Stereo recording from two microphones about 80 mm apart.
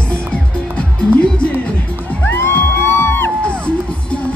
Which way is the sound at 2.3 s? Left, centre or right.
Left.